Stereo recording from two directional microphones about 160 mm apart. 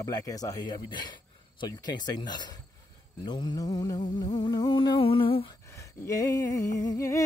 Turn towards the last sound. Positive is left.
turn(degrees=20)  # may be behind; listen again after turning